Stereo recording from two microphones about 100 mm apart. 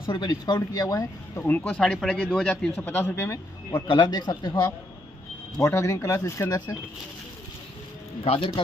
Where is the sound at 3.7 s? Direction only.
45° left (ahead or behind).